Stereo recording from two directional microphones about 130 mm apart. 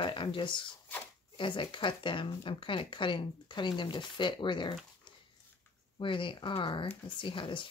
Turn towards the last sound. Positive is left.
turn(degrees=40)  # may be behind; listen again after turning